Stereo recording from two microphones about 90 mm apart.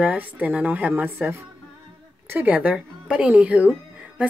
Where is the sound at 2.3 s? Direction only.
15° right (ahead or behind).